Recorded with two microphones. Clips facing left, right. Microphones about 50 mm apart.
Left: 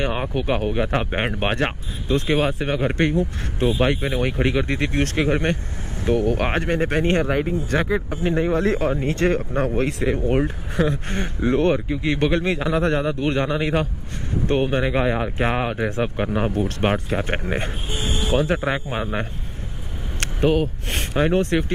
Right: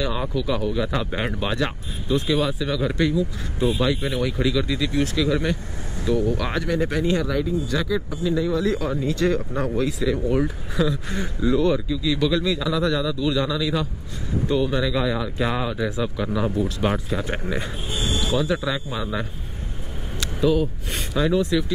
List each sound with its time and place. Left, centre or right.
0.0 s speech: left
17.8 s a sound: left
18.3 s speech: left